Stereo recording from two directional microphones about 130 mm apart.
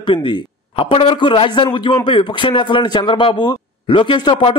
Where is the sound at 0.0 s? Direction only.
40° left (ahead or behind).